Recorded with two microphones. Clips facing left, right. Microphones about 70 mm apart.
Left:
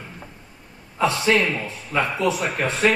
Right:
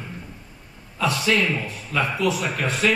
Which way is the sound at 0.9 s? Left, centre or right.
Left.